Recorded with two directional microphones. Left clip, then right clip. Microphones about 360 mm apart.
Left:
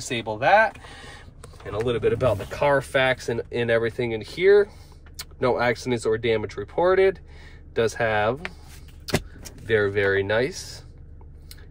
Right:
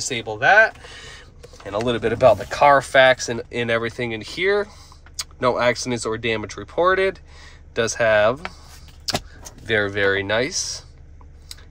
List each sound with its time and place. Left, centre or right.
0.0 s speech: centre
1.8 s speech: centre
9.1 s keys jangling: centre
9.7 s speech: centre